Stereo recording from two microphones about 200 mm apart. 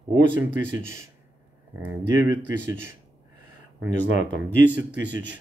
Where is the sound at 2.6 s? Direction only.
10° right (ahead or behind).